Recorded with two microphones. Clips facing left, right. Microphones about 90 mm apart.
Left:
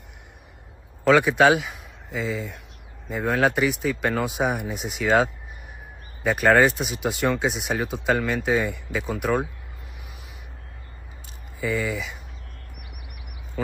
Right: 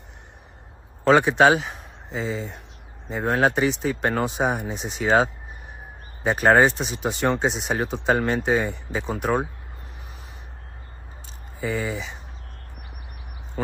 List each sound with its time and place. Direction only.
1.0 s speech: 35° right (ahead or behind)
6.2 s speech: 30° right (ahead or behind)
11.6 s speech: 40° right (ahead or behind)